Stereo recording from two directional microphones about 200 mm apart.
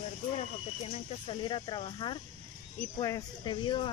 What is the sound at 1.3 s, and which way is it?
Speech, 25° left (ahead or behind).